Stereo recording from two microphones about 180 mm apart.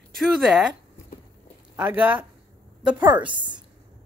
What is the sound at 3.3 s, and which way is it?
Speech, 25° right (ahead or behind).